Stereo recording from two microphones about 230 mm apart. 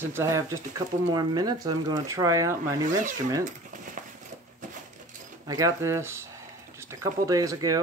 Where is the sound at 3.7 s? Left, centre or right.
Right.